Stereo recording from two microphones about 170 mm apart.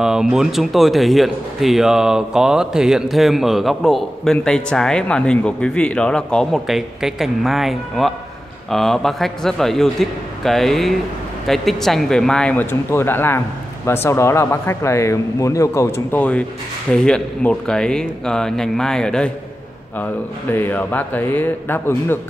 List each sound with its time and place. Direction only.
0.0 s speech: 5° right (ahead or behind); by 22.2 s 15° left (ahead or behind)